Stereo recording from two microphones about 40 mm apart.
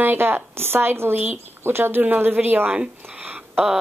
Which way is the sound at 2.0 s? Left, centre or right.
Right.